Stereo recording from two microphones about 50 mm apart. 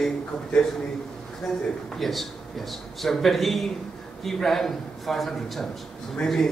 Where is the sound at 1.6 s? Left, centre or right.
Centre.